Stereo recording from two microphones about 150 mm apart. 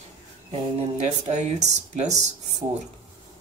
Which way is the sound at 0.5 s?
50° right (ahead or behind).